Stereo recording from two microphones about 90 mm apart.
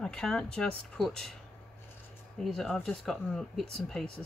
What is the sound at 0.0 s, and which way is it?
Speech, 5° left (ahead or behind).